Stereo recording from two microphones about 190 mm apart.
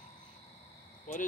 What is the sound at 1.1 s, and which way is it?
Speech, 45° left (ahead or behind).